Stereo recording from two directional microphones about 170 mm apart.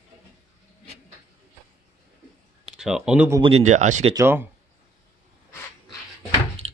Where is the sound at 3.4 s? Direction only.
40° right (ahead or behind).